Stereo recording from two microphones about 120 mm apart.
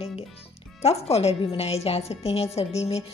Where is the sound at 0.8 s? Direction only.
60° left (ahead or behind).